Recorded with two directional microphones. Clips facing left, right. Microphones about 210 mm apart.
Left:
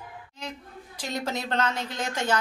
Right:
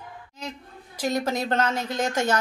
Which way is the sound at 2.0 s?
45° right (ahead or behind).